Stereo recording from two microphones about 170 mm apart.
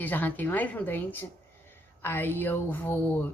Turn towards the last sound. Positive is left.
turn(degrees=10)  # may be behind; listen again after turning